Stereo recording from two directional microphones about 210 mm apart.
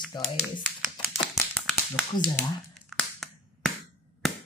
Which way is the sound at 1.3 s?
5° left (ahead or behind).